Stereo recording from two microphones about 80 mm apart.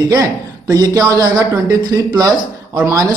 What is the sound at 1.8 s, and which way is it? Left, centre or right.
Speech, right.